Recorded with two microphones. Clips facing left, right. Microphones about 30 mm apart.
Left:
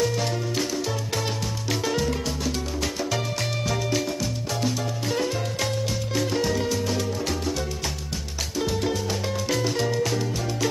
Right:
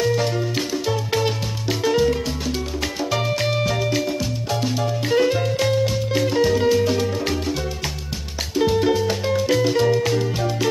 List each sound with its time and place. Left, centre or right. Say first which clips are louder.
0.0 s music: right 5 dB; centre
8.5 s music: right 8 dB; right